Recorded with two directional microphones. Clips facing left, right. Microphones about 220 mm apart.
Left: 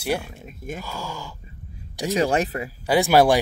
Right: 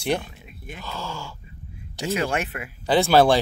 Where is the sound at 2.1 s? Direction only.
35° left (ahead or behind).